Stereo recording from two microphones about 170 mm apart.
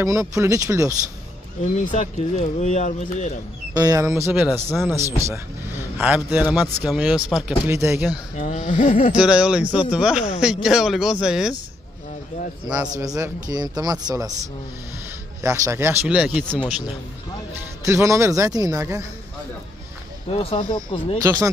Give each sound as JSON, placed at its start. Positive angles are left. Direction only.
{"t": 0.0, "sound": "a man's voice", "side_deg": -20}
{"t": 1.9, "sound": "speech", "side_deg": 45}
{"t": 3.7, "sound": "speech", "side_deg": -20}
{"t": 4.3, "sound": "a man's voice", "side_deg": -5}
{"t": 7.7, "sound": "a man's voice", "side_deg": -15}
{"t": 8.4, "sound": "speech", "side_deg": 45}
{"t": 9.1, "sound": "speech", "side_deg": -5}
{"t": 12.6, "sound": "speech", "side_deg": -5}
{"t": 12.9, "sound": "speech", "side_deg": -20}
{"t": 15.4, "sound": "a man's voice", "side_deg": -20}
{"t": 17.8, "sound": "a man's voice", "side_deg": -15}
{"t": 20.2, "sound": "speech", "side_deg": 35}
{"t": 21.2, "sound": "speech", "side_deg": -20}